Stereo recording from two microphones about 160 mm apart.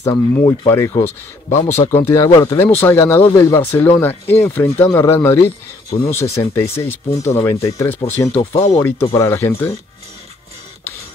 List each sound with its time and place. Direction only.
0.0 s speech: 20° left (ahead or behind)
8.3 s speech: 40° left (ahead or behind)
8.7 s speech: 15° left (ahead or behind)